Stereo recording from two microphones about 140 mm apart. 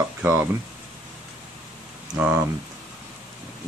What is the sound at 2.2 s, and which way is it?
Speech, 15° right (ahead or behind).